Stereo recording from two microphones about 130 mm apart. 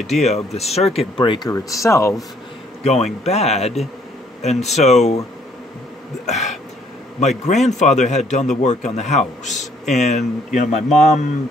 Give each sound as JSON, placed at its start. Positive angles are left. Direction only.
{"t": 0.0, "sound": "a man's voice", "side_deg": 60}
{"t": 1.1, "sound": "speech", "side_deg": 40}
{"t": 1.5, "sound": "speech", "side_deg": 25}
{"t": 2.8, "sound": "a man's voice", "side_deg": 55}
{"t": 6.2, "sound": "a sound", "side_deg": 60}
{"t": 7.2, "sound": "a man's voice", "side_deg": 60}